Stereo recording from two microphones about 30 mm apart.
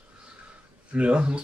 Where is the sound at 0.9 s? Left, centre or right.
Right.